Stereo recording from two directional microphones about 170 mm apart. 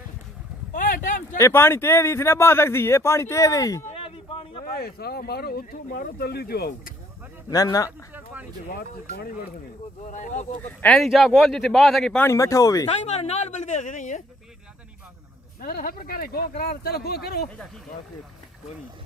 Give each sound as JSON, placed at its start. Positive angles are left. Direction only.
{"t": 0.7, "sound": "a sound", "side_deg": 50}
{"t": 1.4, "sound": "speech", "side_deg": 15}
{"t": 3.9, "sound": "a sound", "side_deg": 30}
{"t": 4.7, "sound": "speech", "side_deg": 65}
{"t": 7.4, "sound": "speech", "side_deg": 20}
{"t": 10.0, "sound": "speech", "side_deg": 50}
{"t": 10.6, "sound": "speech", "side_deg": 10}
{"t": 12.3, "sound": "speech", "side_deg": 20}
{"t": 13.0, "sound": "speech", "side_deg": 40}
{"t": 15.6, "sound": "speech", "side_deg": 60}